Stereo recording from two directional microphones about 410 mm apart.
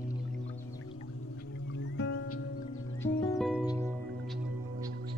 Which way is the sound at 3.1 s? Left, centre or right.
Centre.